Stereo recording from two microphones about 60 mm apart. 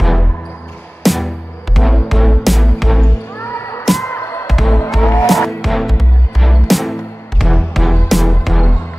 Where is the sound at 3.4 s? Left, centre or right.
Left.